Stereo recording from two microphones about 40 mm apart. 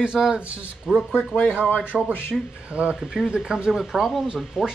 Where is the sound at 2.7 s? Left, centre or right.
Right.